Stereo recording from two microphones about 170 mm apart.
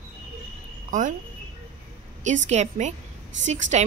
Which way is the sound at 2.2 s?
45° right (ahead or behind).